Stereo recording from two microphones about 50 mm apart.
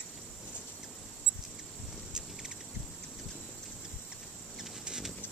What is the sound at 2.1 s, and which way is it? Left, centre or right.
Insect, centre.